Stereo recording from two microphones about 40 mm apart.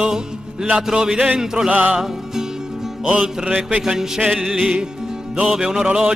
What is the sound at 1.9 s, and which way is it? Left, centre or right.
Music, centre.